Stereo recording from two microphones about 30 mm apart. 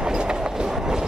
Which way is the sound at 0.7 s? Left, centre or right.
Centre.